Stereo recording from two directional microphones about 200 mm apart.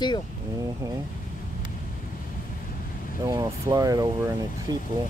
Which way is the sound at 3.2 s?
15° right (ahead or behind).